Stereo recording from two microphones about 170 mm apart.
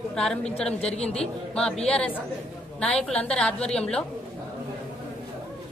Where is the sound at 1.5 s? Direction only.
5° left (ahead or behind).